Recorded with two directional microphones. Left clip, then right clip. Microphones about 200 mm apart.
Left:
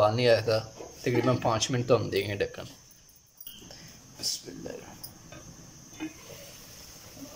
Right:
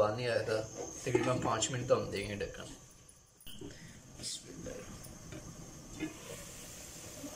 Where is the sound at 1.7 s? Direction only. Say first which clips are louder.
Left 7 dB; 50° left (ahead or behind).